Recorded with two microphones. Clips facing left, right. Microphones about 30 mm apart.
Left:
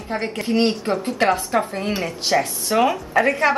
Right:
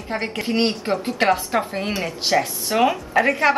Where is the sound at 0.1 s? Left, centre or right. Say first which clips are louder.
Left 1 dB; centre.